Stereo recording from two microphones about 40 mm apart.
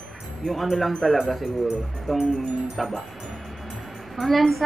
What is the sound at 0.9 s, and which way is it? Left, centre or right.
A woman's voice, centre.